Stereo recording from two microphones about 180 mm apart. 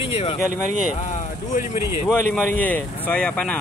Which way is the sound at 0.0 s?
35° left (ahead or behind).